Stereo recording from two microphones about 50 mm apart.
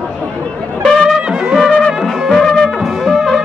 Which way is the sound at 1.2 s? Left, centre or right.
Centre.